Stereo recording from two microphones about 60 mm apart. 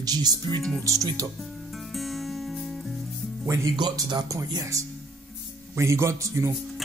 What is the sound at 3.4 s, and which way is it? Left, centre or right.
Speech, right.